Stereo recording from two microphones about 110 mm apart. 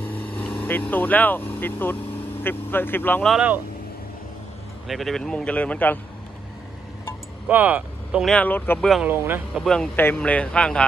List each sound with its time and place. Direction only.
0.1 s speech: 15° left (ahead or behind)
3.3 s speech: 15° right (ahead or behind)
4.8 s a man's voice: centre (ahead or behind)
7.4 s speech: 15° right (ahead or behind)
8.3 s a man's voice: 15° left (ahead or behind)
9.0 s speech: 20° right (ahead or behind)
9.6 s speech: 5° left (ahead or behind)
9.9 s a man's voice: 15° left (ahead or behind)